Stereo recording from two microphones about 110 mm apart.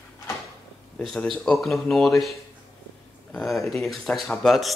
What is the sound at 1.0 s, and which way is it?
Speech, centre (ahead or behind).